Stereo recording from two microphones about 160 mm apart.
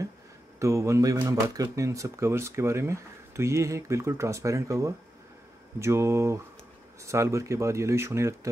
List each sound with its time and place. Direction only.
0.6 s speech: 20° right (ahead or behind)